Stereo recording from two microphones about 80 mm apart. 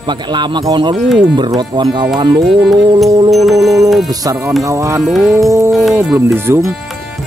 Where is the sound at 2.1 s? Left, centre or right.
Right.